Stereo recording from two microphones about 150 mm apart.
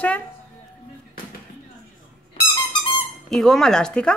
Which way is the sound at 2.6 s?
30° left (ahead or behind).